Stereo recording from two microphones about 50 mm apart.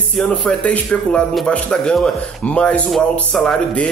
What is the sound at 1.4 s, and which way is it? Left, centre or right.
Speech, centre.